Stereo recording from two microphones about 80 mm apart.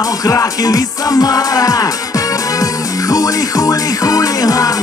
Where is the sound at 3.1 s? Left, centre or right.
Left.